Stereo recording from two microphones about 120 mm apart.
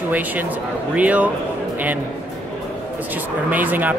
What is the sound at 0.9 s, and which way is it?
Speech, 10° right (ahead or behind).